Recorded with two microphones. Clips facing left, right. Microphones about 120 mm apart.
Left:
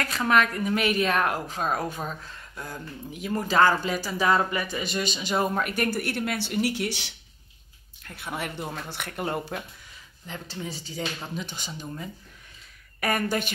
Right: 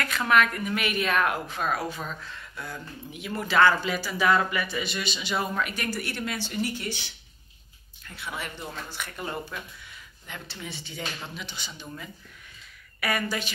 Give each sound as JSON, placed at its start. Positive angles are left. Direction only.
{"t": 0.0, "sound": "a woman's voice", "side_deg": 35}
{"t": 8.0, "sound": "speech", "side_deg": 55}
{"t": 10.2, "sound": "a woman's voice", "side_deg": 35}
{"t": 13.0, "sound": "speech", "side_deg": 45}